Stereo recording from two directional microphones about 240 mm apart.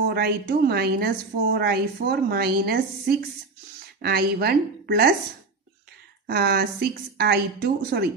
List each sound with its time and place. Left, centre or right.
0.1 s a woman's voice: right
4.0 s a woman's voice: right
6.2 s a woman's voice: right